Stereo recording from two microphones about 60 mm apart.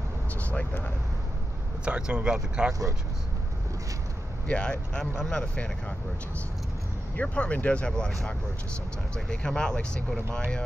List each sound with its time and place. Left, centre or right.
0.3 s speech: left
1.9 s speech: centre
4.5 s speech: centre
7.2 s speech: left